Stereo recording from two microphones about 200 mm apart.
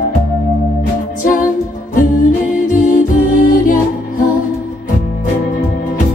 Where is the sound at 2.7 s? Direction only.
40° left (ahead or behind).